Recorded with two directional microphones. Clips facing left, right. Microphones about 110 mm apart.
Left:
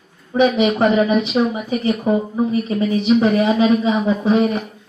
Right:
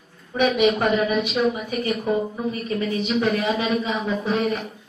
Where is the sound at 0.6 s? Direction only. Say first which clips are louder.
Left 4 dB; 25° left (ahead or behind).